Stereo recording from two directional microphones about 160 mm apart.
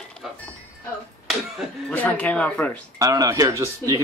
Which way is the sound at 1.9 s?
10° left (ahead or behind).